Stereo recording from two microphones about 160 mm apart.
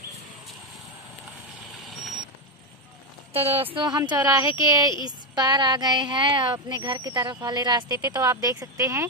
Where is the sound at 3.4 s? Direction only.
40° right (ahead or behind).